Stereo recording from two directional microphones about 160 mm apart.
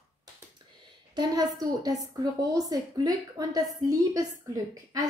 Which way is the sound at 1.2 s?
25° right (ahead or behind).